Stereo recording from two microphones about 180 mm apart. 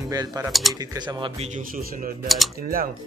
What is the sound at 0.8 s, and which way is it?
Speech, 25° right (ahead or behind).